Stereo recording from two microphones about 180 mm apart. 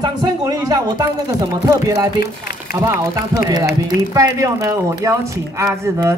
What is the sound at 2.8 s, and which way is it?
Speech, 20° right (ahead or behind).